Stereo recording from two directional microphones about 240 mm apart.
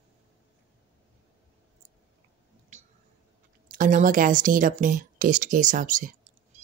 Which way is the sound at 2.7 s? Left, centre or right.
Right.